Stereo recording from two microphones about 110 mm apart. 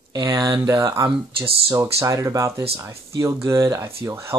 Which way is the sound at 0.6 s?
30° right (ahead or behind).